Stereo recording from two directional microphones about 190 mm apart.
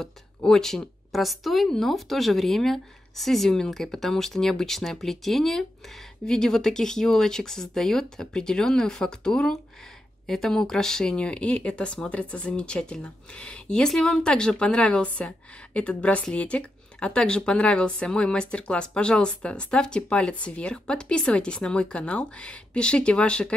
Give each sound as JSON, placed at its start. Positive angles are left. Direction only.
{"t": 0.0, "sound": "speech", "side_deg": 5}